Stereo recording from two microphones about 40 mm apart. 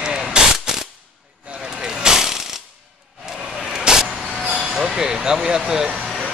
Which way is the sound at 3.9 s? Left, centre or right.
Centre.